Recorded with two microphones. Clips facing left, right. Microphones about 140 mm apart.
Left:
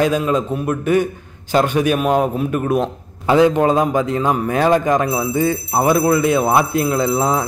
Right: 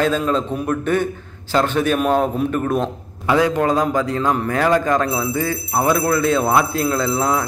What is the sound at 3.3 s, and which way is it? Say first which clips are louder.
Speech: left 4 dB; 20° left (ahead or behind).